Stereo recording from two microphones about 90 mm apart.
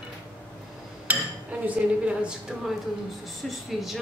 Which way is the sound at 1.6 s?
15° right (ahead or behind).